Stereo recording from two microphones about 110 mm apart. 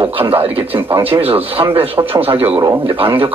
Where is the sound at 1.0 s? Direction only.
60° right (ahead or behind).